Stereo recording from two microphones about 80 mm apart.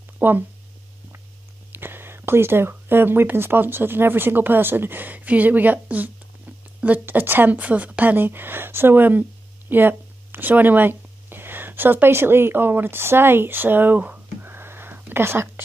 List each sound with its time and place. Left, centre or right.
0.2 s speech: right
1.7 s speech: right